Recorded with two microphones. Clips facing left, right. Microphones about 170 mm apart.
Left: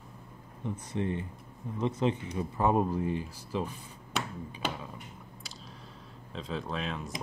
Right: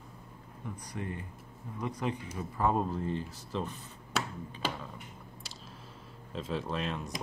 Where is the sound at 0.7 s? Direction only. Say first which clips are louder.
Left 7 dB; 25° left (ahead or behind).